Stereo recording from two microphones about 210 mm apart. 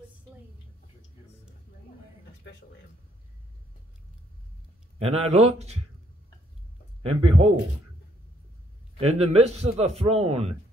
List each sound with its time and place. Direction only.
4.9 s a man's voice: 30° right (ahead or behind)
7.0 s a man's voice: 30° right (ahead or behind)
9.0 s a man's voice: 30° right (ahead or behind)